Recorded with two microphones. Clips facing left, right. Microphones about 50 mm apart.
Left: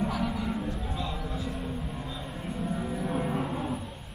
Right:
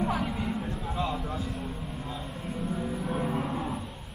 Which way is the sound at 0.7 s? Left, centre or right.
Right.